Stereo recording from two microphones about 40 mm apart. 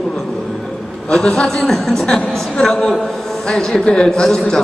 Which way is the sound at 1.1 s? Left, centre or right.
Centre.